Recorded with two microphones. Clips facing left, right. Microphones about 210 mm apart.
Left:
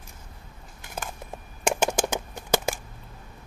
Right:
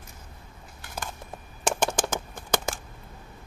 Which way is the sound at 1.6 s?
10° left (ahead or behind).